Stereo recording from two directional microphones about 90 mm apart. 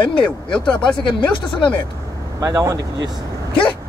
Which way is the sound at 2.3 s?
40° right (ahead or behind).